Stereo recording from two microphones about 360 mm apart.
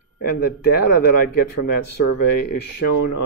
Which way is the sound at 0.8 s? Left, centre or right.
Left.